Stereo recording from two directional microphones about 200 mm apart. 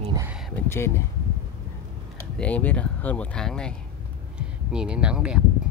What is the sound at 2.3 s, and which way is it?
Speech, 5° left (ahead or behind).